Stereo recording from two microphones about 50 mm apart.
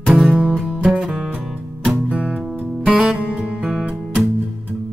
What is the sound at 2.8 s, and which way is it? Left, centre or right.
Music, centre.